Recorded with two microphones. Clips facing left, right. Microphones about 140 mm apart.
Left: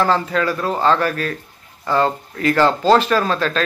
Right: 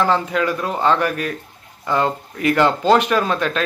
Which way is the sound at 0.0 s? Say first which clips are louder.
Even; 15° right (ahead or behind).